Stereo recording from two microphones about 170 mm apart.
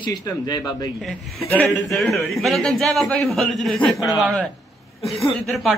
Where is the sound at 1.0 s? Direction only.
5° left (ahead or behind).